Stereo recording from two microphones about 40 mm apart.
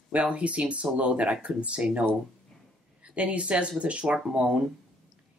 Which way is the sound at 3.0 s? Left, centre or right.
Right.